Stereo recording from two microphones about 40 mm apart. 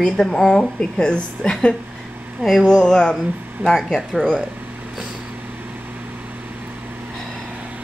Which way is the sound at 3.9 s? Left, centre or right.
Centre.